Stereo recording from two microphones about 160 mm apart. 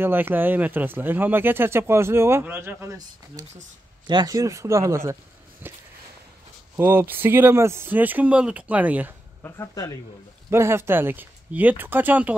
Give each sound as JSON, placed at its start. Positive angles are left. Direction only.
{"t": 0.0, "sound": "speech", "side_deg": -15}
{"t": 6.8, "sound": "speech", "side_deg": -15}
{"t": 9.4, "sound": "speech", "side_deg": 20}
{"t": 10.5, "sound": "speech", "side_deg": -15}